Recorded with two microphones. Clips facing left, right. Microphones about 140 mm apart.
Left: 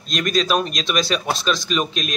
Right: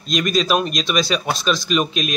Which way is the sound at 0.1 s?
Centre (ahead or behind).